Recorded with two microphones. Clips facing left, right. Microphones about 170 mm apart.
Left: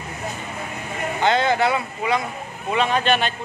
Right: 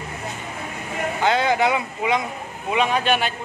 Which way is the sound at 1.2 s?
10° right (ahead or behind).